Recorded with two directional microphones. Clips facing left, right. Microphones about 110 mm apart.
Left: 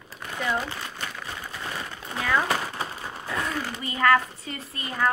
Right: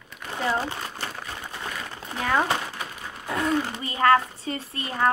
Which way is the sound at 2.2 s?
30° right (ahead or behind).